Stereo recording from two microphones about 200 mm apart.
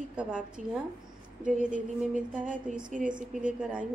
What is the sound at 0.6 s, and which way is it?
A woman's voice, 35° right (ahead or behind).